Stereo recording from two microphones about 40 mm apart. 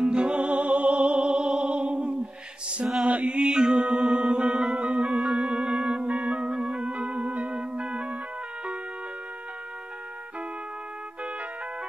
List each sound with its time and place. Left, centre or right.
0.0 s music: right
3.1 s mantra: right
3.3 s music: right
6.0 s music: right
6.4 s organ: centre
6.8 s music: right